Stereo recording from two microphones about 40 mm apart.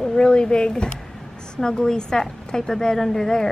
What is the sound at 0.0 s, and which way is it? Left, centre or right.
A woman's voice, centre.